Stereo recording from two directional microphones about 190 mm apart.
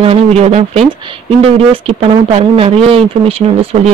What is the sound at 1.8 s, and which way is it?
Speech, 30° right (ahead or behind).